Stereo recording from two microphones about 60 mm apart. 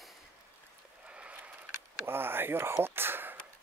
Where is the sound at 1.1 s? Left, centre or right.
Right.